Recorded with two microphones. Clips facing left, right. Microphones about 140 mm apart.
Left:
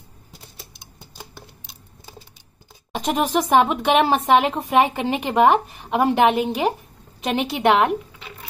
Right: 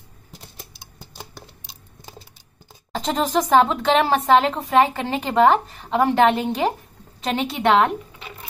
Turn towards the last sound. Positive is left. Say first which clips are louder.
# even
turn(degrees=15)  # may be behind; listen again after turning